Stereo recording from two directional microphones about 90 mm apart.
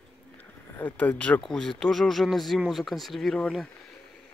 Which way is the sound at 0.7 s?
20° left (ahead or behind).